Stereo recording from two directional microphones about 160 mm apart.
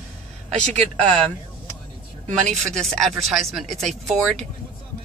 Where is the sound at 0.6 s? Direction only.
5° left (ahead or behind).